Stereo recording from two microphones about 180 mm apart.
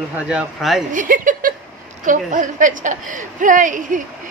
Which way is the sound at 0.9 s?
45° right (ahead or behind).